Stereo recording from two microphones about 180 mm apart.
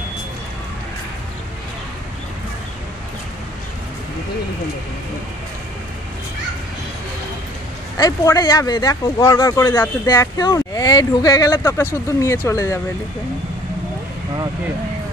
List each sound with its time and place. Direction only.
8.0 s speech: 20° left (ahead or behind)